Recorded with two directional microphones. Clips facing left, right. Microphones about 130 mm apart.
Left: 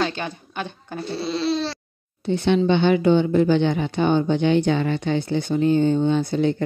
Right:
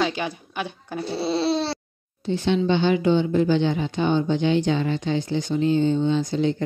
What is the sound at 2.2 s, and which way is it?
Speech, 60° left (ahead or behind).